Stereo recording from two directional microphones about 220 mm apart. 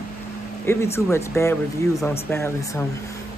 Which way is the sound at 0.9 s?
10° left (ahead or behind).